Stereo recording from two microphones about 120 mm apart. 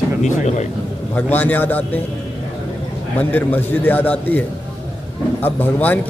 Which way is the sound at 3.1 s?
15° left (ahead or behind).